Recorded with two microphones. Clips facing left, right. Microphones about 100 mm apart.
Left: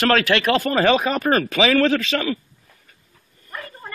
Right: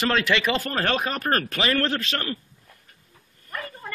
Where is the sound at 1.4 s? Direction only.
90° left.